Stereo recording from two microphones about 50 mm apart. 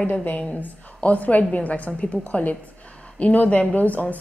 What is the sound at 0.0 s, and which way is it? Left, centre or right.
A woman's voice, left.